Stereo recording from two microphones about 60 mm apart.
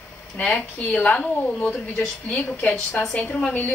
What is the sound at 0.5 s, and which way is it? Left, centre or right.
A woman's voice, left.